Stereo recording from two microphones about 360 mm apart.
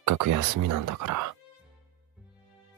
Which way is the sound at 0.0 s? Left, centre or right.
Right.